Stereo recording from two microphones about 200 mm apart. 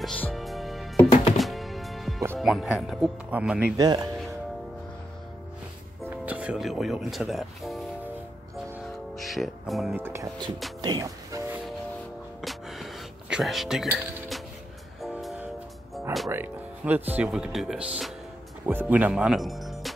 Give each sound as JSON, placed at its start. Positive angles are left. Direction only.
{"t": 0.0, "sound": "music", "side_deg": 5}
{"t": 2.3, "sound": "speech", "side_deg": 0}
{"t": 3.7, "sound": "speech", "side_deg": -20}
{"t": 6.0, "sound": "speech", "side_deg": -5}
{"t": 9.1, "sound": "speech", "side_deg": 0}
{"t": 10.0, "sound": "music", "side_deg": -15}
{"t": 12.4, "sound": "music", "side_deg": 0}
{"t": 15.9, "sound": "music", "side_deg": 0}
{"t": 16.3, "sound": "speech", "side_deg": -10}